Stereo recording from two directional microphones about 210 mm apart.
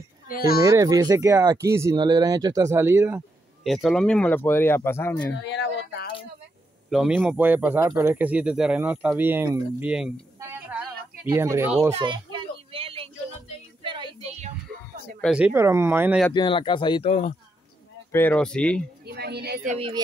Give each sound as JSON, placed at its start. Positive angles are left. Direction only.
{"t": 0.6, "sound": "speech", "side_deg": -15}
{"t": 3.6, "sound": "speech", "side_deg": 0}
{"t": 5.3, "sound": "a sound", "side_deg": 55}
{"t": 6.9, "sound": "speech", "side_deg": 0}
{"t": 12.0, "sound": "a sound", "side_deg": -25}
{"t": 13.8, "sound": "child singing", "side_deg": -20}
{"t": 15.2, "sound": "speech", "side_deg": -5}
{"t": 16.3, "sound": "speech", "side_deg": 25}
{"t": 18.1, "sound": "speech", "side_deg": 10}
{"t": 19.0, "sound": "a woman's voice", "side_deg": -50}
{"t": 19.7, "sound": "speech", "side_deg": -25}